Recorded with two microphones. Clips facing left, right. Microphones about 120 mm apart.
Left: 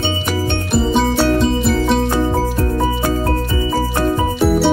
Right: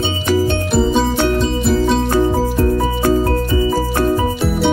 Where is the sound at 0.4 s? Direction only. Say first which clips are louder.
Right 1 dB; centre (ahead or behind).